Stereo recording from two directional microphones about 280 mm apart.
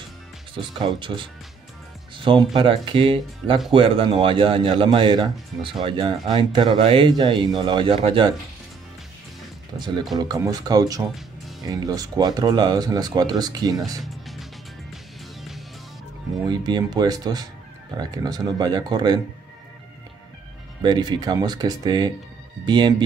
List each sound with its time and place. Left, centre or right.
0.7 s speech: centre
10.1 s speech: centre
14.0 s music: centre
16.4 s speech: centre
20.8 s speech: centre